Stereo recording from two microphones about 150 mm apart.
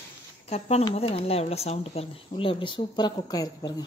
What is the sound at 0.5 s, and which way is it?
Speech, 45° left (ahead or behind).